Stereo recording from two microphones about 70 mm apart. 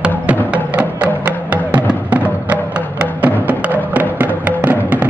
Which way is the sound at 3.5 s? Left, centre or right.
Right.